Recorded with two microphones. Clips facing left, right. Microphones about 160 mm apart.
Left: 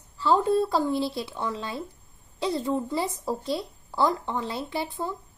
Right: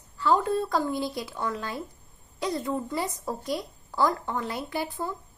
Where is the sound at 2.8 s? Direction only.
5° left (ahead or behind).